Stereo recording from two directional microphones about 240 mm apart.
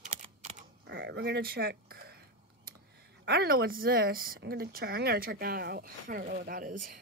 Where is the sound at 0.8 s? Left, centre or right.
Right.